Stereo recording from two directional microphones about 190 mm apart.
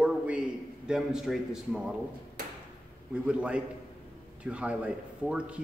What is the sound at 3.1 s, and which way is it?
A man's voice, 5° right (ahead or behind).